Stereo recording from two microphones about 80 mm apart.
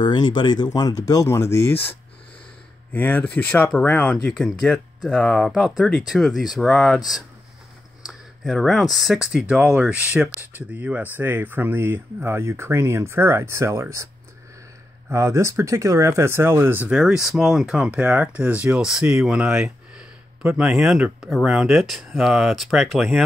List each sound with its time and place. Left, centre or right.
0.0 s speech: left; by 4.3 s centre
4.3 s speech: centre
8.1 s speech: centre; by 14.0 s right
15.0 s speech: right
16.9 s speech: centre
18.8 s speech: centre